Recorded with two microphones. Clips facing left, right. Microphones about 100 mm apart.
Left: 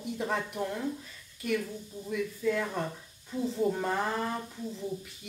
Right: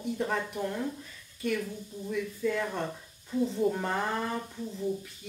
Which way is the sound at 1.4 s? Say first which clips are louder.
Even; centre (ahead or behind).